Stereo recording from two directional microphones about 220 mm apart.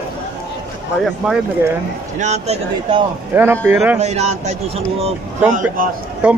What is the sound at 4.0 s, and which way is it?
Speech, 30° right (ahead or behind).